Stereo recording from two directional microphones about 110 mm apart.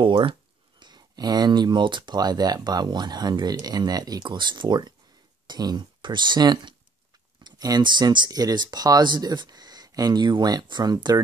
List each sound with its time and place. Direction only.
0.0 s speech: 50° right (ahead or behind)